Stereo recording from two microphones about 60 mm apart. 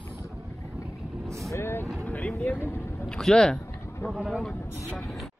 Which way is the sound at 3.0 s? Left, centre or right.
Centre.